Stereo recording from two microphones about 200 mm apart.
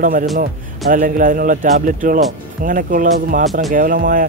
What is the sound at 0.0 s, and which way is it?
A man's voice, 45° right (ahead or behind).